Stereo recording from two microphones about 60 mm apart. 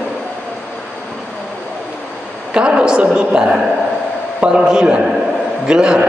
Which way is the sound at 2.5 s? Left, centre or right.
Centre.